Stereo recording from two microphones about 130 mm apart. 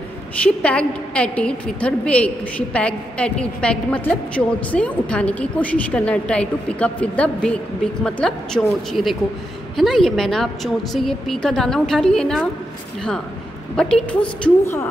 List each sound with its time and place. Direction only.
0.4 s a woman's voice: 10° left (ahead or behind)
13.7 s a woman's voice: 5° left (ahead or behind)